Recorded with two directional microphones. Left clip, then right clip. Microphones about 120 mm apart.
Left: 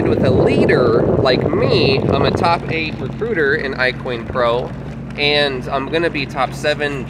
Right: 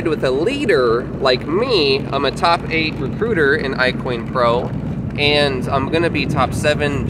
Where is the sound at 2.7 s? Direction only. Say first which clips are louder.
Right 2 dB; 30° right (ahead or behind).